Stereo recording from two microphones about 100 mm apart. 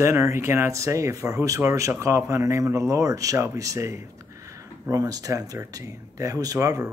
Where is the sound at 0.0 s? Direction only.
25° right (ahead or behind).